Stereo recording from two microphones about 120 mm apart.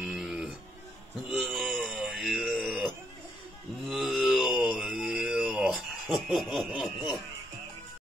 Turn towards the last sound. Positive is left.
turn(degrees=0)  # may be behind; listen again after turning